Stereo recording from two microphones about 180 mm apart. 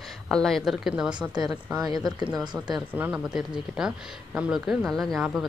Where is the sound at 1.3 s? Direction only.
20° right (ahead or behind).